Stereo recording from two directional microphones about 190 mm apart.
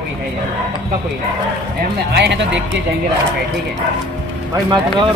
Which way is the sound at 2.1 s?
65° right (ahead or behind).